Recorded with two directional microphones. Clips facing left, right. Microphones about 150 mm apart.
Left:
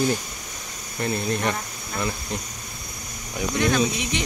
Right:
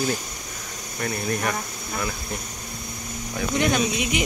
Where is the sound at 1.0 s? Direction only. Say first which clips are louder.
Left 2 dB; 20° left (ahead or behind).